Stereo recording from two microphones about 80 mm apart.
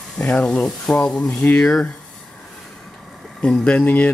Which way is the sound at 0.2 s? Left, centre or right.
Centre.